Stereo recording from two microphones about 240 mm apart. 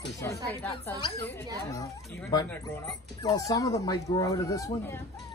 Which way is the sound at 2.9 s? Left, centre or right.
Centre.